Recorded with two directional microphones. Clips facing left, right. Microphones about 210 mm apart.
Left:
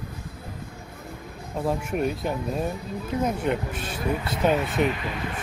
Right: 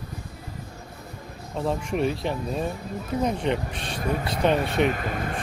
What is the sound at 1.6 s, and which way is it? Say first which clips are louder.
Speech: even; 5° left (ahead or behind).